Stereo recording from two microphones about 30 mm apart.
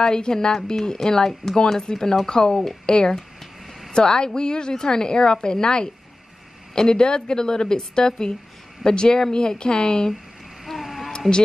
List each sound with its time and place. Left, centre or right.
0.0 s a woman's voice: left
10.6 s a sound: centre
11.1 s speech: left